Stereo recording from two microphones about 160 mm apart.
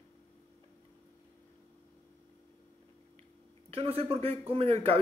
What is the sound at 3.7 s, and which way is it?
Speech, 35° right (ahead or behind).